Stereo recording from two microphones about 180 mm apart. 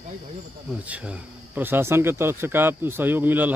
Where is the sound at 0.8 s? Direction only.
5° right (ahead or behind).